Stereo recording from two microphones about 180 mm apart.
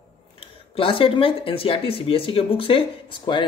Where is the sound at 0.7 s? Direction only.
30° left (ahead or behind).